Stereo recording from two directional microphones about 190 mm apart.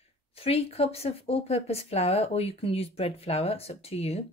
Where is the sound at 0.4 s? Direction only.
30° left (ahead or behind).